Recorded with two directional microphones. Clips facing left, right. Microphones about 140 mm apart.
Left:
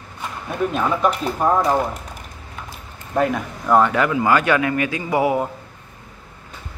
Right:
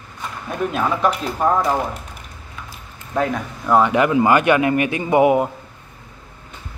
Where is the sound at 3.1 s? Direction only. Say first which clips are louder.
Left 1 dB; 5° left (ahead or behind).